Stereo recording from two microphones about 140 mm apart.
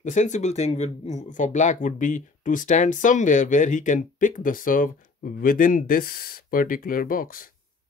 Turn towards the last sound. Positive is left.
turn(degrees=90)